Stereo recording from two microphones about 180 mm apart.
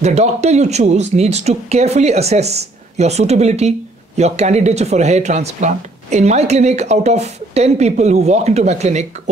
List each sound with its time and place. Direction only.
0.0 s speech: 35° right (ahead or behind)